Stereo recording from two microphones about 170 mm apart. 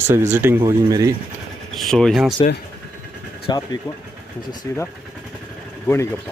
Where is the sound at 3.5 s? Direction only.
25° left (ahead or behind).